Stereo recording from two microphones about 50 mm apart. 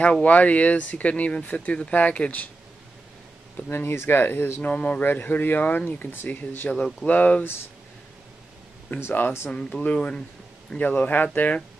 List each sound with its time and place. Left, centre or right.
0.0 s speech: left
3.7 s speech: left
4.6 s speech: left
8.9 s speech: left
9.5 s speech: centre
10.8 s speech: left